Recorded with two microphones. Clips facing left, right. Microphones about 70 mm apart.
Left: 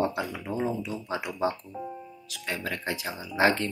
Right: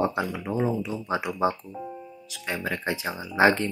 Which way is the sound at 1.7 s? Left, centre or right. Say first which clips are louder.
Right 1 dB; centre.